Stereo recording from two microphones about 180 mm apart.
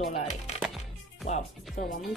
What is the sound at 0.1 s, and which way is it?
Music, 40° left (ahead or behind).